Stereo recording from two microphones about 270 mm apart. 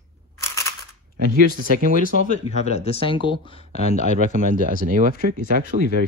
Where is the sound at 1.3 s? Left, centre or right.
Right.